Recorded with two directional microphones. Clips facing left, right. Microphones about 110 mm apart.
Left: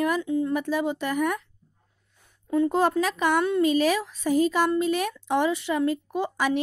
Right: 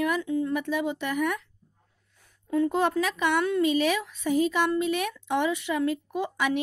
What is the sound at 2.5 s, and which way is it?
Speech, 35° left (ahead or behind).